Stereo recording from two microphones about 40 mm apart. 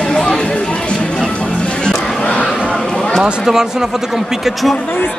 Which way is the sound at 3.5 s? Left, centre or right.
Centre.